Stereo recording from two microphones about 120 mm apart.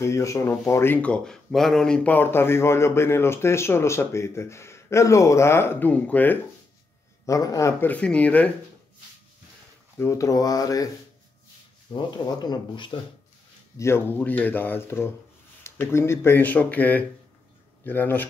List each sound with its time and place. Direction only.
0.0 s speech: 25° left (ahead or behind)
7.2 s speech: 30° left (ahead or behind)
7.8 s speech: 10° left (ahead or behind)
9.9 s speech: 25° left (ahead or behind)
11.9 s speech: 35° left (ahead or behind)
13.7 s speech: 20° left (ahead or behind)